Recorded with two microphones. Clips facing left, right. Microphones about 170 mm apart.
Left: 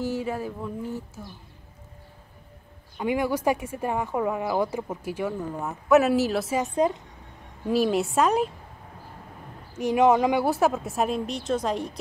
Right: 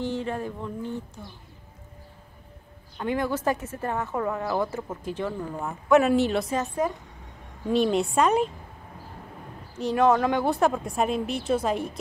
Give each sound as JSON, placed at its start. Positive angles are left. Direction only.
{"t": 0.0, "sound": "speech", "side_deg": 5}
{"t": 3.0, "sound": "speech", "side_deg": 10}
{"t": 6.6, "sound": "a woman's voice", "side_deg": 20}
{"t": 7.6, "sound": "speech", "side_deg": 5}
{"t": 9.8, "sound": "speech", "side_deg": 15}